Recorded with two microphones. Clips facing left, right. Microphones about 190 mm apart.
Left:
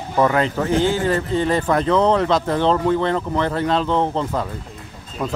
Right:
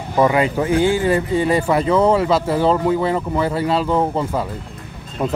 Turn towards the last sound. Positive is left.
turn(degrees=-25)  # may be behind; listen again after turning